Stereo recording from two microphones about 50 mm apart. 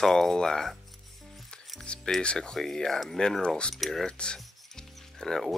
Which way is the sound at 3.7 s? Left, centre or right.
Centre.